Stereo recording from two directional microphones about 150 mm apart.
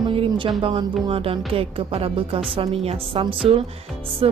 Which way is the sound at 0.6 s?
35° right (ahead or behind).